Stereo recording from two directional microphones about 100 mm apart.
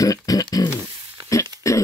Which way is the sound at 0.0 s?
35° left (ahead or behind).